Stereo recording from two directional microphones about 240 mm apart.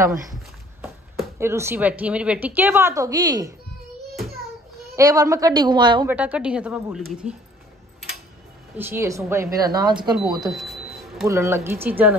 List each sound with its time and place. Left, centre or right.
1.4 s a woman's voice: centre
4.9 s a woman's voice: centre
6.0 s a woman's voice: centre
8.7 s a woman's voice: centre
10.1 s cash register: centre
11.2 s a woman's voice: centre